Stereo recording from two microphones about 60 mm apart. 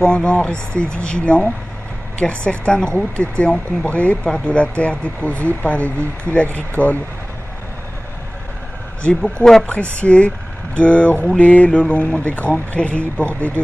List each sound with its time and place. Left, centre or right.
0.0 s speech: centre
9.2 s speech: centre
9.9 s speech: centre